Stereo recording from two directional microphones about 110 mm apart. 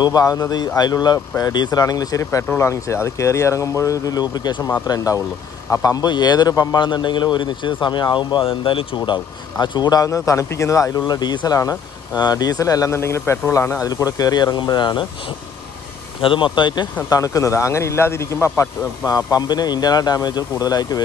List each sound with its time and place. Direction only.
0.0 s a man's voice: 35° left (ahead or behind)
6.8 s a man's voice: 45° left (ahead or behind)
17.1 s a man's voice: 30° left (ahead or behind)